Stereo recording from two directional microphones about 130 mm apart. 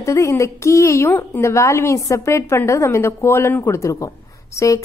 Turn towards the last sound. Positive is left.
turn(degrees=25)  # may be behind; listen again after turning